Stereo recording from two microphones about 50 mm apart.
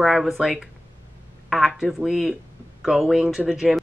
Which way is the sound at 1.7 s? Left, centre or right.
Centre.